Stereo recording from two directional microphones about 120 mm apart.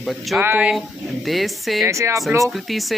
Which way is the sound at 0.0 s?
Centre (ahead or behind).